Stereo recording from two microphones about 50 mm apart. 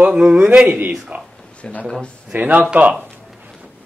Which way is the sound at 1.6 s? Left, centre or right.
Left.